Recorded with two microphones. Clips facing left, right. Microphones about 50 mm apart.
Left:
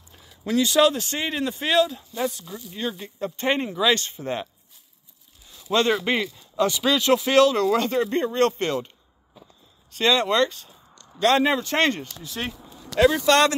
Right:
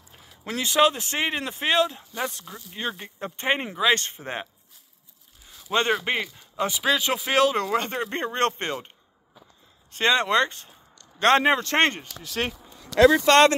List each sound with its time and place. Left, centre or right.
0.1 s speech: right
1.1 s speech: right
5.7 s speech: centre; by 12.1 s right
12.2 s speech: right
13.2 s speech: right